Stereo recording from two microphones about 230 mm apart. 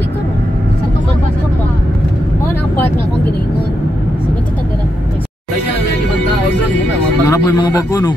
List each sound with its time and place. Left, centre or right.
7.2 s a man's voice: centre